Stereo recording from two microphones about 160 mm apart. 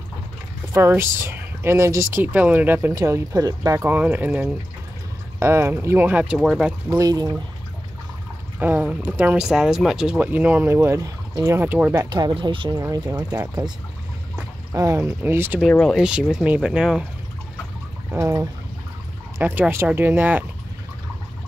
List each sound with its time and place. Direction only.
0.7 s speech: 15° right (ahead or behind); by 6.7 s centre (ahead or behind)
6.9 s speech: 25° right (ahead or behind)
8.5 s speech: 10° right (ahead or behind)
11.9 s speech: 25° right (ahead or behind)
15.7 s speech: 5° left (ahead or behind)
18.1 s speech: 20° right (ahead or behind)